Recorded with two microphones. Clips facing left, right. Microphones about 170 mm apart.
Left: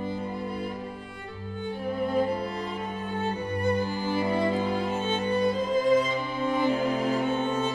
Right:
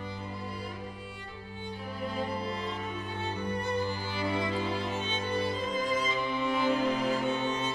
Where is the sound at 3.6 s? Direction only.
50° left (ahead or behind).